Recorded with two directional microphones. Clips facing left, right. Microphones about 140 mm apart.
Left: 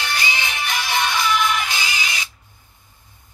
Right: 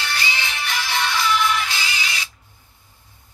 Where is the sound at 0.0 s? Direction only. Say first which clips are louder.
Left 2 dB; 15° left (ahead or behind).